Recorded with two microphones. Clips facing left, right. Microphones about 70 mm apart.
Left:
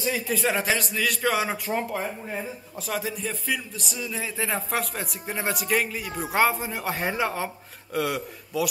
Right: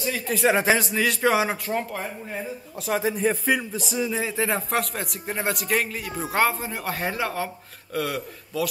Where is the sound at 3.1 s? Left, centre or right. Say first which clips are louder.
Right 7 dB; right.